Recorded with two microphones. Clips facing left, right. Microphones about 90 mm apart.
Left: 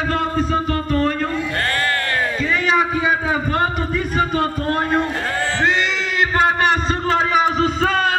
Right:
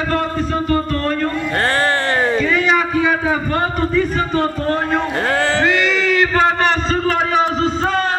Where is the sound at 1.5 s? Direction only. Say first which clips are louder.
Right 4 dB; 30° right (ahead or behind).